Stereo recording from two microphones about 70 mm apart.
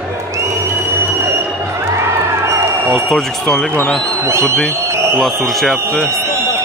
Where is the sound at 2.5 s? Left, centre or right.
Right.